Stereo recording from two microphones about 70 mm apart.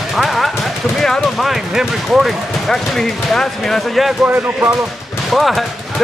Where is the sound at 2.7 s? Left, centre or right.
Centre.